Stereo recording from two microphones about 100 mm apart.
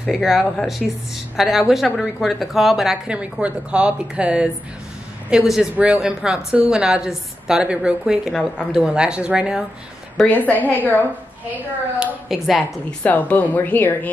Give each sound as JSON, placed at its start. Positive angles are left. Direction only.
{"t": 0.0, "sound": "a woman's voice", "side_deg": -5}
{"t": 10.1, "sound": "a woman's voice", "side_deg": 15}
{"t": 11.5, "sound": "a woman's voice", "side_deg": -5}
{"t": 13.0, "sound": "a woman's voice", "side_deg": 15}